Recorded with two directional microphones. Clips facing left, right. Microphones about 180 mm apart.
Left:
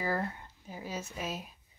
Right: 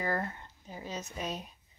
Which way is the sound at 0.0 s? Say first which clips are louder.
Even; 10° left (ahead or behind).